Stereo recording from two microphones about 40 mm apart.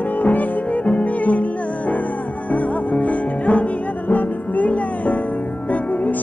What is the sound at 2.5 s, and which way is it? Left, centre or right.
Music, left.